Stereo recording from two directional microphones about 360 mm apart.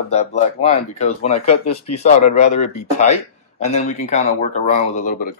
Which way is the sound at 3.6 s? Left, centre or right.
Centre.